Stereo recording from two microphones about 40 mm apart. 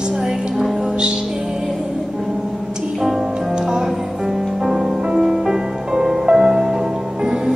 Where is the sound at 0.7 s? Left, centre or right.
Centre.